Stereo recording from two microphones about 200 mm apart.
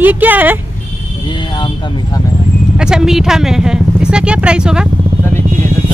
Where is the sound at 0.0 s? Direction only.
10° right (ahead or behind).